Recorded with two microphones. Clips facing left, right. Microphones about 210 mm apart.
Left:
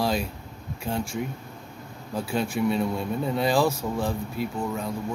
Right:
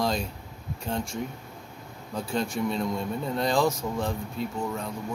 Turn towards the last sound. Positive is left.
turn(degrees=5)  # may be behind; listen again after turning